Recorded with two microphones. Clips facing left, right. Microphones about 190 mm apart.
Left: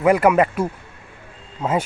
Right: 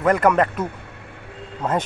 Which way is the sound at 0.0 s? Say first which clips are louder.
Left 2 dB; 10° left (ahead or behind).